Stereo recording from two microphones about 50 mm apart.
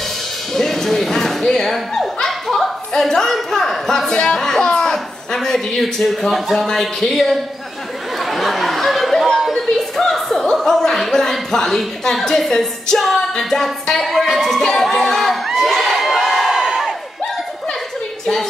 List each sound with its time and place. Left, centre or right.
0.6 s a man's voice: centre
8.2 s a sound: centre
10.5 s speech: centre
14.6 s crowd: centre
16.4 s crowd: centre